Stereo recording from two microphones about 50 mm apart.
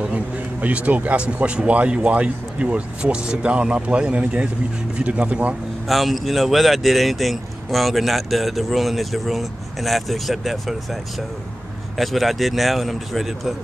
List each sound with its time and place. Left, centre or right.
0.0 s speech: right
5.9 s speech: centre
12.0 s speech: centre